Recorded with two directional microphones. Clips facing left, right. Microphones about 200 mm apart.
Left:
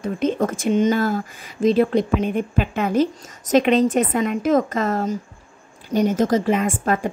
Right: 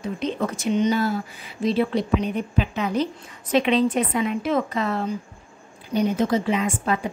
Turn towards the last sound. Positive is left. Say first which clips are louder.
# left 3 dB
turn(degrees=50)  # may be behind; listen again after turning